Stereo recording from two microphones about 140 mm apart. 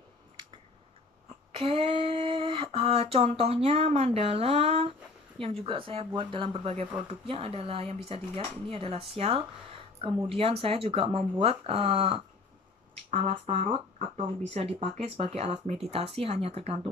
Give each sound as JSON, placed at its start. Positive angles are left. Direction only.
{"t": 1.5, "sound": "speech", "side_deg": -45}
{"t": 13.9, "sound": "speech", "side_deg": -50}